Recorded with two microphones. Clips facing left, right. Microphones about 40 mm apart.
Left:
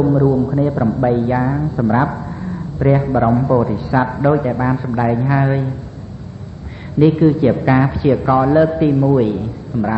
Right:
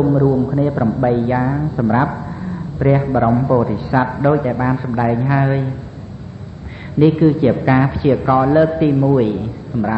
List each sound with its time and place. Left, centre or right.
0.0 s speech: centre
0.4 s a man's voice: centre
3.7 s a man's voice: centre
7.0 s a man's voice: centre